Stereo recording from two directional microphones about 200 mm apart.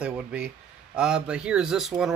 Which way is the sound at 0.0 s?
5° right (ahead or behind).